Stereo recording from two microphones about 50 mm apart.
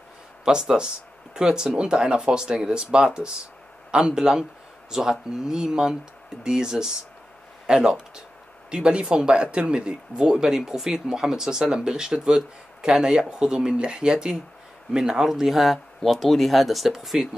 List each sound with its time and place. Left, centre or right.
0.5 s speech: centre